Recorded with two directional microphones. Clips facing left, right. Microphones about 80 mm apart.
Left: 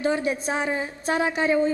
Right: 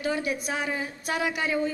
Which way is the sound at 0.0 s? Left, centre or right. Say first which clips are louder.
Left 4 dB; left.